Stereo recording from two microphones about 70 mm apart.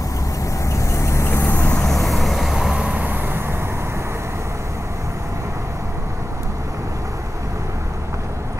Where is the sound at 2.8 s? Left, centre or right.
Centre.